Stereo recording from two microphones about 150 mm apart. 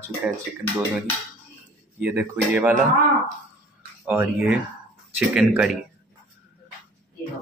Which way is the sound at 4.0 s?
10° right (ahead or behind).